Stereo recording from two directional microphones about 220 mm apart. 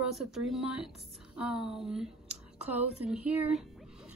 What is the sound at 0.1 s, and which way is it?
Speech, centre (ahead or behind).